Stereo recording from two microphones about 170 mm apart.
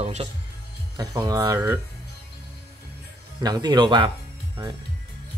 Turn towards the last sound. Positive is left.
turn(degrees=-30)  # may be behind; listen again after turning